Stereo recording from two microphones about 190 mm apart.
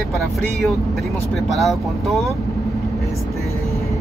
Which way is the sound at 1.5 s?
Centre (ahead or behind).